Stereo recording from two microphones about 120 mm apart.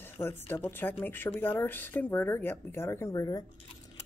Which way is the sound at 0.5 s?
20° left (ahead or behind).